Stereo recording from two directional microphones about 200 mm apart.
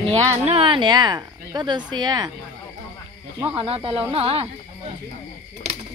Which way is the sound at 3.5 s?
30° right (ahead or behind).